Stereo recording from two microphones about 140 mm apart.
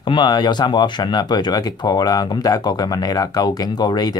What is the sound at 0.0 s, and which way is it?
Speech, 35° left (ahead or behind).